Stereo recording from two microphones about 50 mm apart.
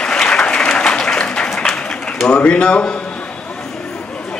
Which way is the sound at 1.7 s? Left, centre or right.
Centre.